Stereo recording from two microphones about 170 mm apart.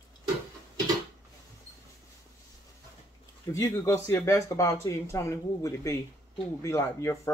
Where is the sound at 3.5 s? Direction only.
15° left (ahead or behind).